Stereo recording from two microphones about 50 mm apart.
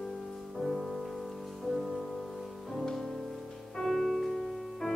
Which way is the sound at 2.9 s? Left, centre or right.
Centre.